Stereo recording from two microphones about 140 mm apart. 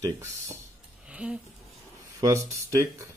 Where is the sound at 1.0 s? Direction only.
10° right (ahead or behind).